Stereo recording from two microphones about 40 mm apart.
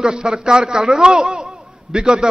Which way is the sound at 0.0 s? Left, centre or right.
Centre.